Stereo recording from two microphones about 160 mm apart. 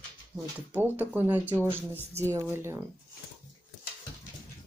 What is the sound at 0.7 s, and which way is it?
Speech, 10° right (ahead or behind).